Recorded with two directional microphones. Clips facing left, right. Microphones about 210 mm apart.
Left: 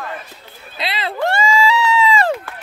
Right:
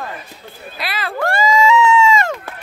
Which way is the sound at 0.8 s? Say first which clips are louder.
Left 1 dB; 20° left (ahead or behind).